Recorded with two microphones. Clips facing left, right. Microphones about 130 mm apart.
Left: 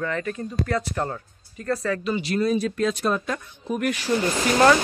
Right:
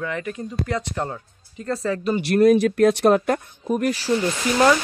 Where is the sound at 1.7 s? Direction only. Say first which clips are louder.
Right 1 dB; 30° right (ahead or behind).